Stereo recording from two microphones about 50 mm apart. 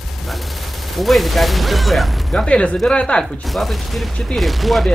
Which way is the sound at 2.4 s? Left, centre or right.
Left.